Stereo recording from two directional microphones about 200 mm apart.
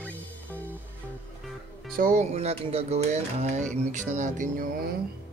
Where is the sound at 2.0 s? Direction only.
40° right (ahead or behind).